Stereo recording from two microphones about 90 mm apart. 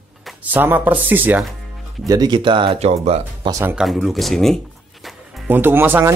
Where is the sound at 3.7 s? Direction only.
Centre (ahead or behind).